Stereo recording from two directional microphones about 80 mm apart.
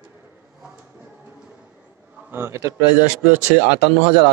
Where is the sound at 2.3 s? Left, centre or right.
Right.